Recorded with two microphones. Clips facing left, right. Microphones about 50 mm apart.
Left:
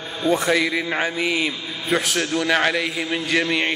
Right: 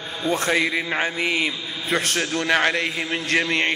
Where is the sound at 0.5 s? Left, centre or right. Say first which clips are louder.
Left 1 dB; centre.